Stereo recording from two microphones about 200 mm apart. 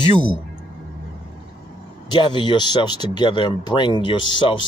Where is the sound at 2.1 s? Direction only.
25° left (ahead or behind).